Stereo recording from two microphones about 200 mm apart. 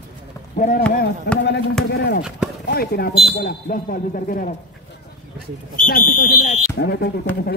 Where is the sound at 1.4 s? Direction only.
60° left (ahead or behind).